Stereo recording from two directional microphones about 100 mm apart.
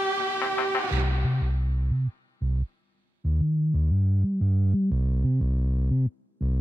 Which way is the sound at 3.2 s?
Centre (ahead or behind).